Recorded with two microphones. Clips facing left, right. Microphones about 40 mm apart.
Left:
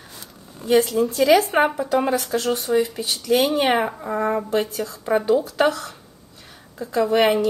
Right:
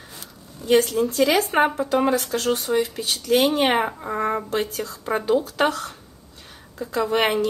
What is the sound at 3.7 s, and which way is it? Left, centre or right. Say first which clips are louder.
Speech: left 1 dB; centre.